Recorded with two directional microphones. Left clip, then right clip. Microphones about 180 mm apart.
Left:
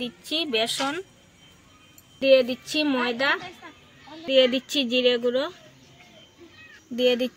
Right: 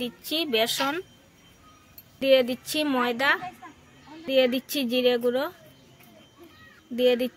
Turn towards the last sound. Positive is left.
turn(degrees=10)  # may be behind; listen again after turning